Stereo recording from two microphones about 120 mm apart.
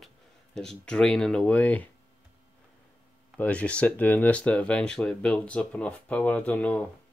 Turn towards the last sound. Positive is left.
turn(degrees=10)  # may be behind; listen again after turning